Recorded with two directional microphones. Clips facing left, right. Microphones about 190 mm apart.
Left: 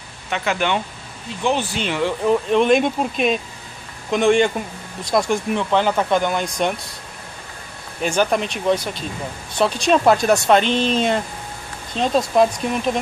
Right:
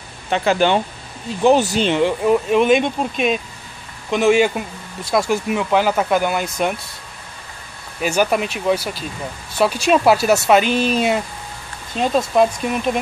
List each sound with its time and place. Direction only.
0.3 s speech: 35° right (ahead or behind)
1.9 s speech: 20° right (ahead or behind)
2.2 s speech: 5° right (ahead or behind)
8.0 s speech: 5° right (ahead or behind)